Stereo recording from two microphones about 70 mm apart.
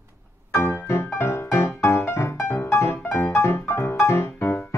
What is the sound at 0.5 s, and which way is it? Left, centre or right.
Music, left.